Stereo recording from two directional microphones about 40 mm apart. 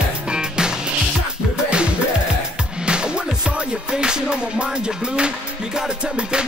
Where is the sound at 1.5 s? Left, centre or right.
Right.